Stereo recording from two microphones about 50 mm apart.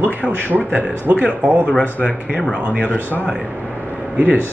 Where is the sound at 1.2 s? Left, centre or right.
Right.